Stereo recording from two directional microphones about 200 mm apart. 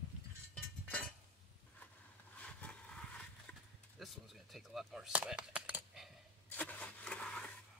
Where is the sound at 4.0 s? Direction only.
Centre (ahead or behind).